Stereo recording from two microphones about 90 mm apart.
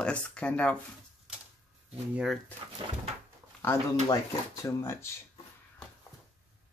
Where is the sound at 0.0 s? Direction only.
15° left (ahead or behind).